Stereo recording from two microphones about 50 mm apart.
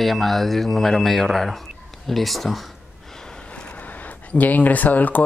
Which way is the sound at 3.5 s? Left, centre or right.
Left.